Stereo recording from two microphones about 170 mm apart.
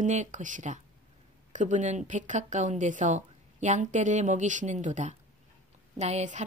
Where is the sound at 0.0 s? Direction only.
45° right (ahead or behind).